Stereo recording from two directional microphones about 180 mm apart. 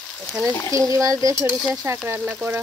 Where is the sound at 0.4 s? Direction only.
5° left (ahead or behind).